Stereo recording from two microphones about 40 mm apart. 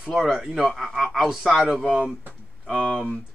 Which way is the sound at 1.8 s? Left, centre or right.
Right.